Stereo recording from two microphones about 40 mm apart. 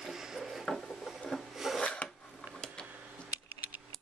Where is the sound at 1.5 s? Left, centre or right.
Centre.